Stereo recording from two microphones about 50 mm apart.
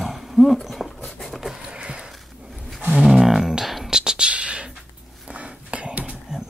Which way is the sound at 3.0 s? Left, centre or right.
Centre.